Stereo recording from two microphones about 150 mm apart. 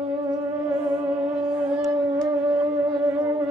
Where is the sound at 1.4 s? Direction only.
30° right (ahead or behind).